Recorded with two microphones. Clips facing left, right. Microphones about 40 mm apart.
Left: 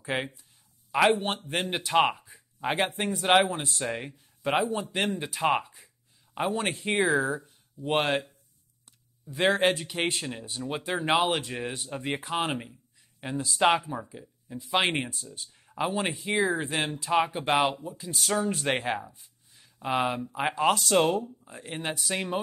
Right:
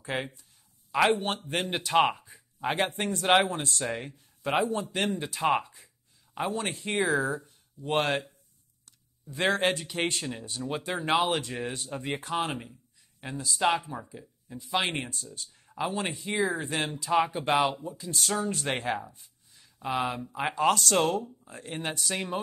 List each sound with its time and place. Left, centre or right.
0.0 s speech: left
0.9 s speech: centre
6.4 s speech: left; by 8.3 s centre
9.3 s speech: centre
12.2 s speech: left
13.7 s speech: centre
14.7 s speech: left
15.5 s speech: centre
16.3 s speech: left
17.0 s speech: centre
18.7 s speech: left
18.9 s speech: centre
21.2 s speech: centre
21.5 s speech: centre